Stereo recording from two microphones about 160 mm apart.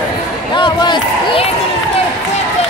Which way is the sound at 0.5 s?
30° left (ahead or behind).